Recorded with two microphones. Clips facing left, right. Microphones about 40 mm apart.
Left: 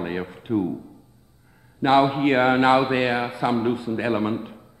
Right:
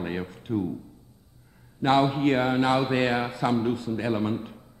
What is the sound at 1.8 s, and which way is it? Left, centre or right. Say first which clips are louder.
Speech: left 3 dB; centre.